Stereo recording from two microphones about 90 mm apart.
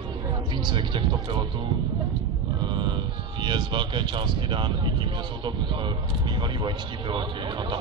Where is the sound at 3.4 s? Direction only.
60° right (ahead or behind).